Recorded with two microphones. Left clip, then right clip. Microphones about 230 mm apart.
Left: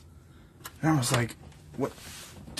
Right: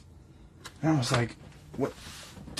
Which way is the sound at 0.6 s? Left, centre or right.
Centre.